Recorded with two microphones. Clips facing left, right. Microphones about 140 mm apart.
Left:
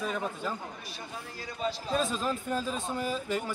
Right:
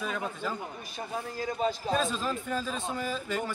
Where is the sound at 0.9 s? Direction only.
45° right (ahead or behind).